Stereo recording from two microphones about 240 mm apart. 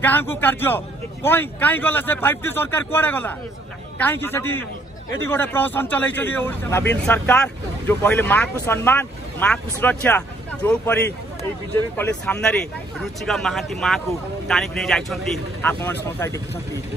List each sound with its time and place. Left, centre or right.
0.0 s a man's voice: centre